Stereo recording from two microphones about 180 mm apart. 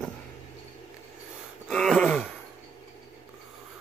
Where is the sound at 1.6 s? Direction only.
Centre (ahead or behind).